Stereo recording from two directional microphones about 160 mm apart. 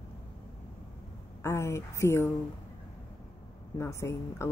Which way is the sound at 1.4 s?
15° left (ahead or behind).